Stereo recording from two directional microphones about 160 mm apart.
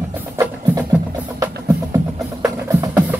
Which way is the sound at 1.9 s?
20° right (ahead or behind).